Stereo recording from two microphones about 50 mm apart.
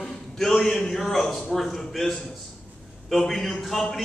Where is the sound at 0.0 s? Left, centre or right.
Centre.